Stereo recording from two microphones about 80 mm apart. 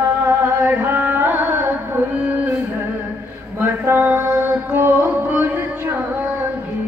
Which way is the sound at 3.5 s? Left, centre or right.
Right.